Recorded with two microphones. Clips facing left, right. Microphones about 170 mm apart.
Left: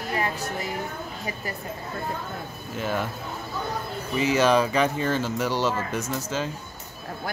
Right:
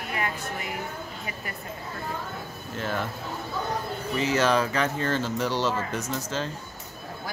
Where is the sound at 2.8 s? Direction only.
10° left (ahead or behind).